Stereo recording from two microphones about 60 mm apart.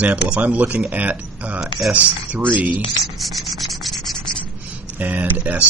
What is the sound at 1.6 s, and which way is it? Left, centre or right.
Speech, centre.